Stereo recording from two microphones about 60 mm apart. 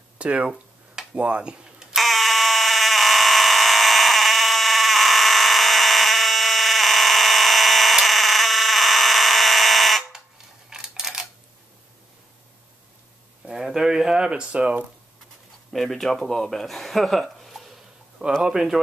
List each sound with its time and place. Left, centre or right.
0.2 s speech: right
0.5 s a sound: centre
2.0 s fire alarm: centre
10.7 s a sound: centre
13.5 s speech: centre
15.7 s speech: centre